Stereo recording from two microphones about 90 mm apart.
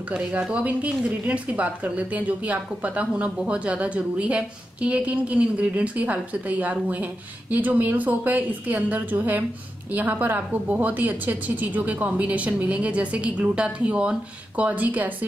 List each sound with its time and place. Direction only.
0.1 s a woman's voice: 10° right (ahead or behind)